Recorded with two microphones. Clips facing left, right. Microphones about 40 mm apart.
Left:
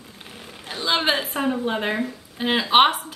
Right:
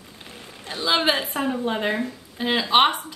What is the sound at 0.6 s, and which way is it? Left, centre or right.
Speech, centre.